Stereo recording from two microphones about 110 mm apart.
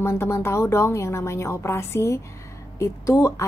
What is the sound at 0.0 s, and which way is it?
A woman's voice, 25° left (ahead or behind).